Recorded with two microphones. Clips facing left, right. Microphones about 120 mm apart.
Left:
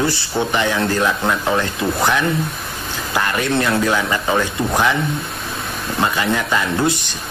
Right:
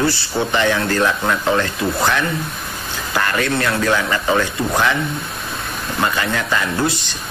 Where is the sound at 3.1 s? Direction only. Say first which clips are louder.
Left 1 dB; 20° left (ahead or behind).